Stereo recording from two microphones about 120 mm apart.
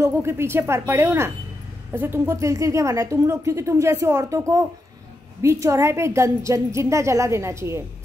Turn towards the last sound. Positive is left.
turn(degrees=-25)  # may be behind; listen again after turning